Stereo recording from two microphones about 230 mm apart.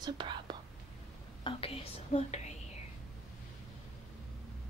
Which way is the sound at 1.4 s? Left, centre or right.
Left.